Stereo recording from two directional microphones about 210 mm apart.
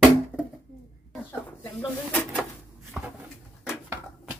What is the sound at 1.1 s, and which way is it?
Speech, 5° left (ahead or behind).